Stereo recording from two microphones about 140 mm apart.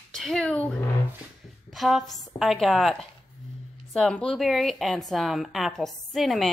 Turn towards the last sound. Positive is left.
turn(degrees=0)  # may be behind; listen again after turning